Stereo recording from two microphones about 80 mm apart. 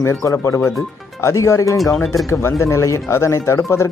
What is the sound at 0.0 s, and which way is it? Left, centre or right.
Speech, left.